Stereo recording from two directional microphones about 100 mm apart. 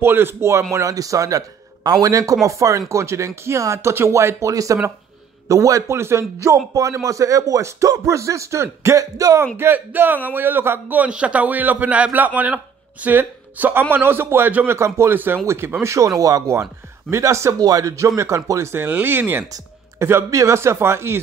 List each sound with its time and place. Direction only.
0.0 s speech: 20° right (ahead or behind)
9.6 s a man's voice: 20° right (ahead or behind)